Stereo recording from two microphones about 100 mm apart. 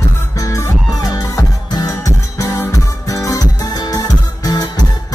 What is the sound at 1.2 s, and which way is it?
Music, 40° left (ahead or behind).